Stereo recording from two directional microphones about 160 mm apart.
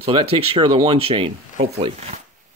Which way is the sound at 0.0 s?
35° right (ahead or behind).